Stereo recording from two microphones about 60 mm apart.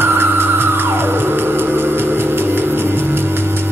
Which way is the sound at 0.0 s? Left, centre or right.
Right.